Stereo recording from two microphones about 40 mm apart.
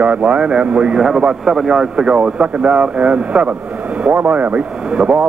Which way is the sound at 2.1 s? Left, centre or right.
Right.